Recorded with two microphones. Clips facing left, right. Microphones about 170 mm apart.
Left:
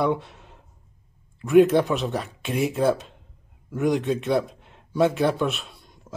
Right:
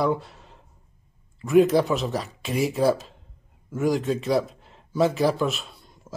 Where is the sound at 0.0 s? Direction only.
Centre (ahead or behind).